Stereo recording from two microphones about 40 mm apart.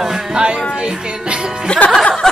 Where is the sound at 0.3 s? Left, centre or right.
Right.